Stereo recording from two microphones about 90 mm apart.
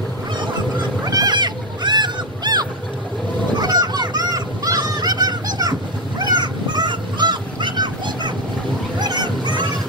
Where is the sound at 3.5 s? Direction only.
50° right (ahead or behind).